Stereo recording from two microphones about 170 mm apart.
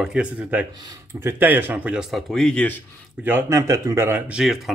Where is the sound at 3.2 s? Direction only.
10° right (ahead or behind).